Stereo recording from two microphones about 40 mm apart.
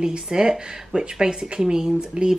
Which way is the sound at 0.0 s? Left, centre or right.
Centre.